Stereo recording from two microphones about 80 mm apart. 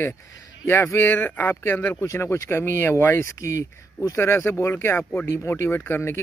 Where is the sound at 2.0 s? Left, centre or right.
Left.